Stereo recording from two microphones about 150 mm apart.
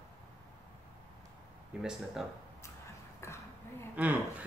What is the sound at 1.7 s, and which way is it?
Speech, 5° right (ahead or behind).